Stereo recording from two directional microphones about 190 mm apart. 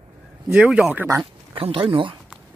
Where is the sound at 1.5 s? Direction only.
30° right (ahead or behind).